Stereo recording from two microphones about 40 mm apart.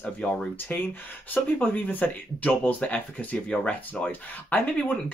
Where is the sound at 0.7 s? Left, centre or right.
Left.